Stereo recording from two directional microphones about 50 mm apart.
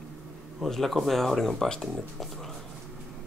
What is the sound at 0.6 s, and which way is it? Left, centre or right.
Speech, centre.